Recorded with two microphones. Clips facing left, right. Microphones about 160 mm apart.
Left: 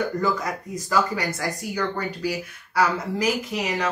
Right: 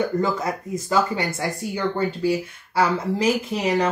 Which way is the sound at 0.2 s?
25° right (ahead or behind).